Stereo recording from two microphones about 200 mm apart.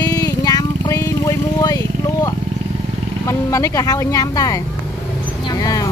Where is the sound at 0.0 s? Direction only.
20° left (ahead or behind).